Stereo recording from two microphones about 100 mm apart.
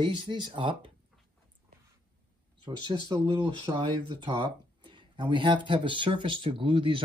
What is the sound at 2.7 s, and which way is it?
Speech, 50° right (ahead or behind).